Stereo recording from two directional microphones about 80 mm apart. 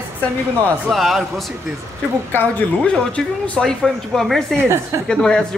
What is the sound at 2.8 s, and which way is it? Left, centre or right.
Speech, centre.